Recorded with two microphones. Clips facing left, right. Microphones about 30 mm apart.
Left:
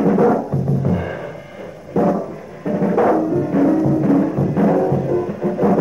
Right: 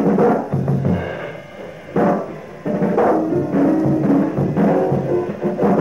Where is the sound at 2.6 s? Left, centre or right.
Centre.